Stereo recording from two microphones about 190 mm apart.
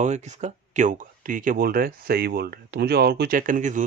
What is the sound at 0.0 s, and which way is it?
Speech, 40° right (ahead or behind).